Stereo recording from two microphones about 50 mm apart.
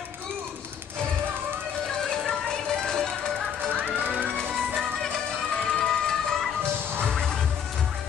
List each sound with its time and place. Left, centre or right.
2.0 s music: centre
3.8 s music: right
4.4 s music: centre